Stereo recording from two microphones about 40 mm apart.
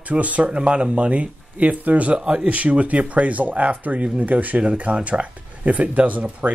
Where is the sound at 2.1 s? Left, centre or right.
Right.